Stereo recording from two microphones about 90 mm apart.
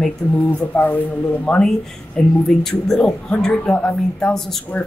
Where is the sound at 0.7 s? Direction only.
20° left (ahead or behind).